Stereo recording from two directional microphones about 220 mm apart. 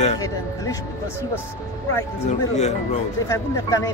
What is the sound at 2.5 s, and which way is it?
Speech, 30° left (ahead or behind).